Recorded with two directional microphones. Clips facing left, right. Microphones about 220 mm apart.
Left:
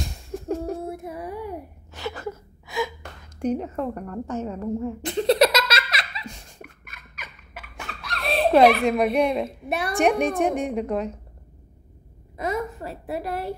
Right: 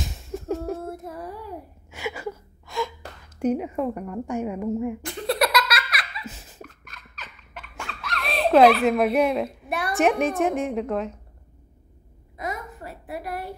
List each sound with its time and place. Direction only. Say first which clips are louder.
0.0 s a sound: even; centre (ahead or behind)
0.8 s child singing: left 2 dB; 15° left (ahead or behind)
1.9 s a sound: right 1 dB; 10° right (ahead or behind)
2.2 s gasp: even; 5° left (ahead or behind)
3.3 s speech: right 2 dB; 10° right (ahead or behind)
5.0 s laughter: left 11 dB; 20° left (ahead or behind)
6.2 s a sound: even; 5° right (ahead or behind)
6.6 s laughter: right 4 dB; 10° left (ahead or behind)
8.8 s a woman's voice: even; centre (ahead or behind)
9.7 s a woman's voice: left 1 dB; 20° left (ahead or behind)
9.9 s a woman's voice: even; centre (ahead or behind)
12.4 s a sound: left 6 dB; 30° left (ahead or behind)